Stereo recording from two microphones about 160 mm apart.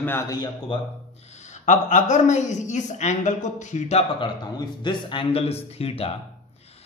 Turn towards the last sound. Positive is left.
turn(degrees=40)  # may be behind; listen again after turning